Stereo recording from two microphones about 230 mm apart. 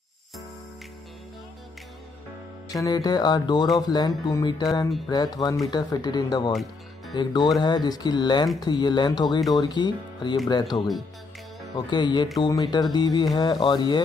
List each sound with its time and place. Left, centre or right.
2.7 s speech: centre